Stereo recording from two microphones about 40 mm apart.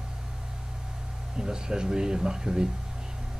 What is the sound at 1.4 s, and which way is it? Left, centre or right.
Speech, centre.